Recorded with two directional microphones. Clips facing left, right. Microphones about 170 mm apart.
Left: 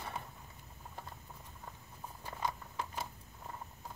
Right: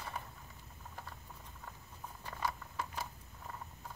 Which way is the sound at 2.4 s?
20° left (ahead or behind).